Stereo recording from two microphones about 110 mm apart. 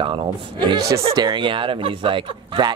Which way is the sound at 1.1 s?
40° right (ahead or behind).